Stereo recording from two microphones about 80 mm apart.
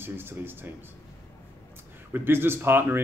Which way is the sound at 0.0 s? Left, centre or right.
Right.